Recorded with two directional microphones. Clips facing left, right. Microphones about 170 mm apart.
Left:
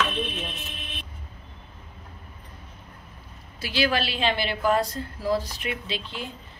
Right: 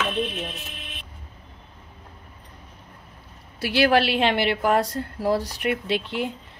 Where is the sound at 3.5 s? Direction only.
70° right (ahead or behind).